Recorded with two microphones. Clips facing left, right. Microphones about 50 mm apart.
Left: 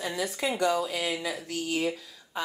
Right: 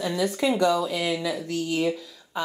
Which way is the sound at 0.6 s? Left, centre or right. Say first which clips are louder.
Right 1 dB; right.